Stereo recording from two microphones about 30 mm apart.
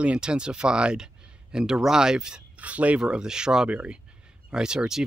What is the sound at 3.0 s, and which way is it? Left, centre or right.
Speech, right.